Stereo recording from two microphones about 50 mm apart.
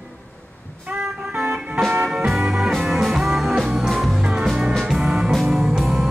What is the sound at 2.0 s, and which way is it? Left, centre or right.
Music, centre.